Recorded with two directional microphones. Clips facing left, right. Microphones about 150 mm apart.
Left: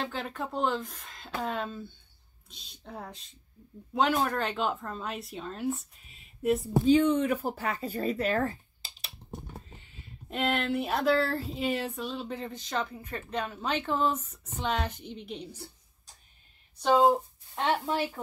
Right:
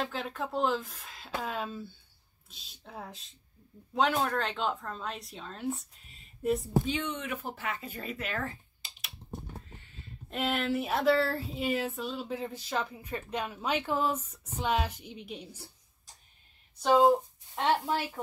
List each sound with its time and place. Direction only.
0.0 s speech: centre (ahead or behind)
6.9 s speech: 35° left (ahead or behind)
10.3 s a sound: centre (ahead or behind)
17.6 s speech: centre (ahead or behind)